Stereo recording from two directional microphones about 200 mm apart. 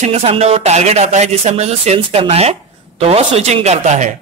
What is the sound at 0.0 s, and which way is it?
A man's voice, 30° right (ahead or behind).